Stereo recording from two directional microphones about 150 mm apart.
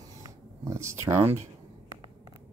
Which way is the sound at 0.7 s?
20° right (ahead or behind).